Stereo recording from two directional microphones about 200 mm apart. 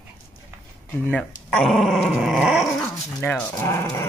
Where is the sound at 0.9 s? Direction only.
5° left (ahead or behind).